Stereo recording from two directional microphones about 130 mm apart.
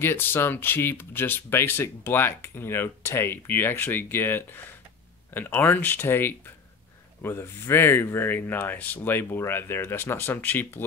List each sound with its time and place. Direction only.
0.0 s speech: 15° left (ahead or behind)